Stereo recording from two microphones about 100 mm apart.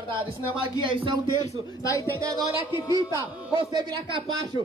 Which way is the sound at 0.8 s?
60° right (ahead or behind).